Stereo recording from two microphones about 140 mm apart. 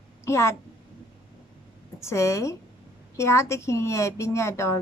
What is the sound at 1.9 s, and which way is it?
A woman's voice, 20° left (ahead or behind).